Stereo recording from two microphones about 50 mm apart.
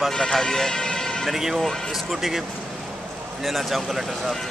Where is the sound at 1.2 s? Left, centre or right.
Centre.